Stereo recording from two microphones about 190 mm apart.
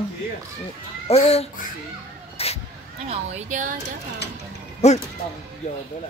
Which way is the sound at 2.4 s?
30° left (ahead or behind).